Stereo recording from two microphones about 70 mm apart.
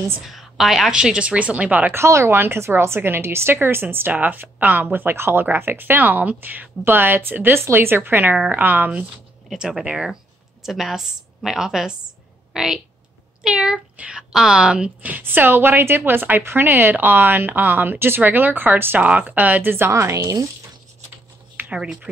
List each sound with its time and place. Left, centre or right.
0.3 s a woman's voice: centre; by 2.0 s right
2.0 s a woman's voice: right
9.6 s a woman's voice: centre
13.9 s a woman's voice: centre
19.9 s a woman's voice: right
21.7 s a woman's voice: centre